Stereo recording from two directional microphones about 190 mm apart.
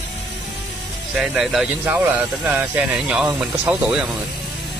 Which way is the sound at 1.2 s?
Centre (ahead or behind).